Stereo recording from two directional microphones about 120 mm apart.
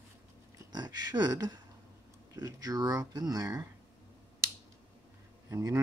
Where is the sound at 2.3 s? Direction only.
30° right (ahead or behind).